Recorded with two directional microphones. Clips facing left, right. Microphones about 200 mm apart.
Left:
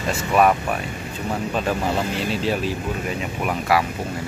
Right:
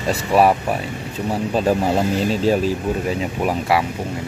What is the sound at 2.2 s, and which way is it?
Speech, 40° right (ahead or behind).